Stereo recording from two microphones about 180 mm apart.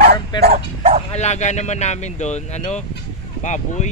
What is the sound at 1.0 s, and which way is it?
Speech, 40° left (ahead or behind).